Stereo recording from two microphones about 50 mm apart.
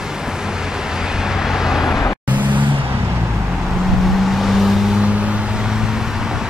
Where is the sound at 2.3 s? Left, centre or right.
Right.